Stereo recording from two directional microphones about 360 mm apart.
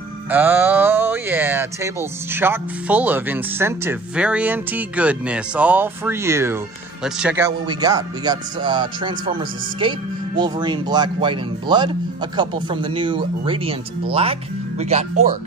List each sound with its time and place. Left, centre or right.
0.3 s speech: centre